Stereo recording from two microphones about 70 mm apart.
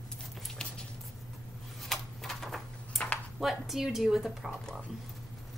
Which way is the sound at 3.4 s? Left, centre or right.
Centre.